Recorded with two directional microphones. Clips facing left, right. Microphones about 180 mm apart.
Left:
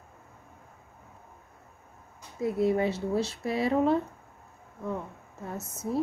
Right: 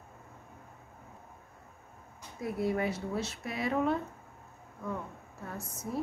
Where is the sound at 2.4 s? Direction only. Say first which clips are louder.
Left 6 dB; 25° left (ahead or behind).